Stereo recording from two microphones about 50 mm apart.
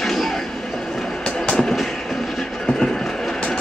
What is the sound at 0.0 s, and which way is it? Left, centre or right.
Train, centre.